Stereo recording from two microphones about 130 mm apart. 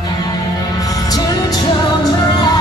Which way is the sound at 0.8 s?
30° left (ahead or behind).